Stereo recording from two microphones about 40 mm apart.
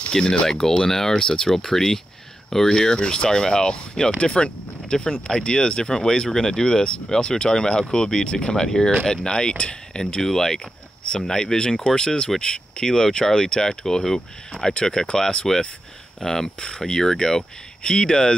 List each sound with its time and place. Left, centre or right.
0.1 s speech: centre
14.5 s speech: left
15.5 s speech: centre